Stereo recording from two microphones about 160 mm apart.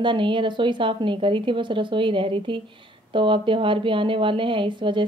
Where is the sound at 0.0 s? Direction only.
30° right (ahead or behind).